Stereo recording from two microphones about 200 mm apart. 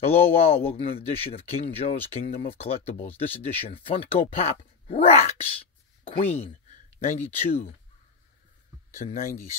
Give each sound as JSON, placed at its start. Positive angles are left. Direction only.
{"t": 0.0, "sound": "speech", "side_deg": 30}
{"t": 6.2, "sound": "a sound", "side_deg": 10}
{"t": 7.0, "sound": "speech", "side_deg": 35}
{"t": 8.9, "sound": "speech", "side_deg": 40}